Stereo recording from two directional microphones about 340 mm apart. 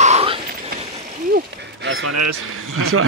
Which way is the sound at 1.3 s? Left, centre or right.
Right.